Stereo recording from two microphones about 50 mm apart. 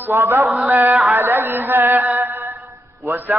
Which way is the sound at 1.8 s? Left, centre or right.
Right.